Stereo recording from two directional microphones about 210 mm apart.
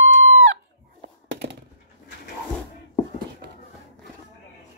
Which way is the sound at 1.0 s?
50° right (ahead or behind).